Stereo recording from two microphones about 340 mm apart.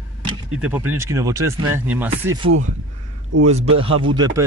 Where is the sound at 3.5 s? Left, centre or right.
Centre.